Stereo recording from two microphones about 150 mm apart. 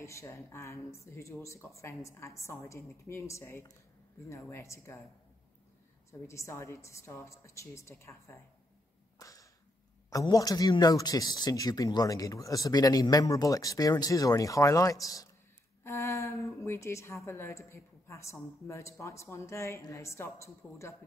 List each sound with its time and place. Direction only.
0.0 s speech: 20° left (ahead or behind)
6.2 s speech: 20° left (ahead or behind)
9.2 s whip: 20° left (ahead or behind)
10.0 s speech: 20° left (ahead or behind)